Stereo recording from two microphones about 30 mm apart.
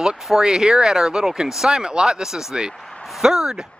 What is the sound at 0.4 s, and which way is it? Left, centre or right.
Speech, centre.